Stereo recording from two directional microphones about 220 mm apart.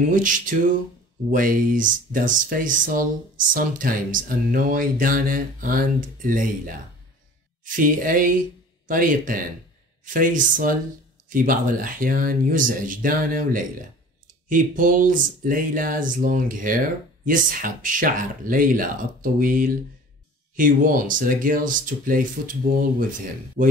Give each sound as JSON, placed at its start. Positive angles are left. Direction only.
{"t": 0.1, "sound": "speech", "side_deg": -35}
{"t": 7.6, "sound": "speech", "side_deg": -40}